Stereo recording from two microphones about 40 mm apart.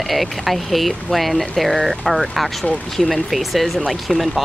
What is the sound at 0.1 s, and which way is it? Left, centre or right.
Speech, centre.